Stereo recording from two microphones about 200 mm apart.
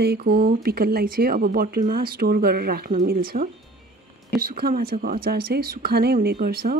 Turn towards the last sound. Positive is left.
turn(degrees=-50)  # may be behind; listen again after turning